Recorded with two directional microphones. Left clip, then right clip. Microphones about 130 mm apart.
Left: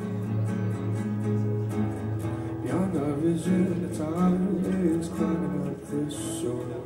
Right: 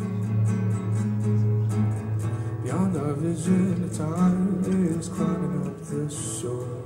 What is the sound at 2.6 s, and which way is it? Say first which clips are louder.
Music: even; 35° right (ahead or behind).